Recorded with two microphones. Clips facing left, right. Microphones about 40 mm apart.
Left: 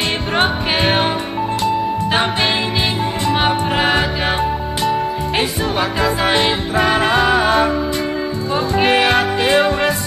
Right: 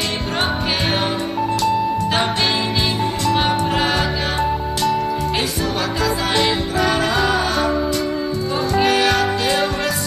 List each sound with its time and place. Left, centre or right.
0.3 s music: left